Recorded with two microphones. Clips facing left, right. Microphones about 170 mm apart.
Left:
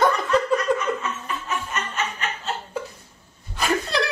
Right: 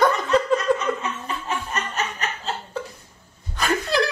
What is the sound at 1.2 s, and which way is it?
Music, 35° right (ahead or behind).